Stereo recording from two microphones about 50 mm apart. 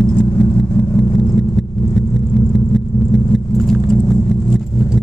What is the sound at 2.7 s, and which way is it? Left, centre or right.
Vehicle, centre.